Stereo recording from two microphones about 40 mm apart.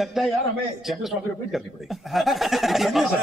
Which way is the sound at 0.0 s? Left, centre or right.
Centre.